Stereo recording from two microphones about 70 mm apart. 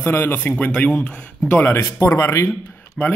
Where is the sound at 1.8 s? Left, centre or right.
Left.